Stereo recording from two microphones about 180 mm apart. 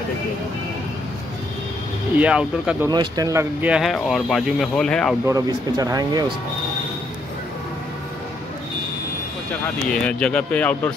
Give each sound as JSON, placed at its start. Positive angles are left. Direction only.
{"t": 2.1, "sound": "speech", "side_deg": -5}
{"t": 2.9, "sound": "speech", "side_deg": -20}
{"t": 3.6, "sound": "speech", "side_deg": -5}
{"t": 5.2, "sound": "speech", "side_deg": -20}
{"t": 9.8, "sound": "speech", "side_deg": 5}